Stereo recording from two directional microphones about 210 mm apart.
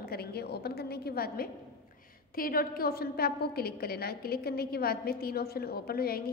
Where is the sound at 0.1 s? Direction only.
50° left (ahead or behind).